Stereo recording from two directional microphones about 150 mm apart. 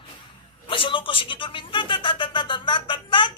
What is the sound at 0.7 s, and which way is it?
A man's voice, 35° left (ahead or behind).